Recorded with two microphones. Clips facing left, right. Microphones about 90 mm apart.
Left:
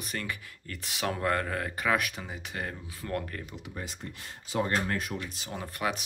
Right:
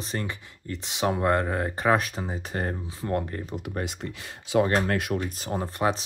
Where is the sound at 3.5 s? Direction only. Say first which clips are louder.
Right 8 dB; 55° right (ahead or behind).